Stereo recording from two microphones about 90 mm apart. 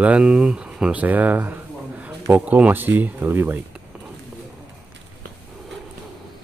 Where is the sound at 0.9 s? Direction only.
20° right (ahead or behind).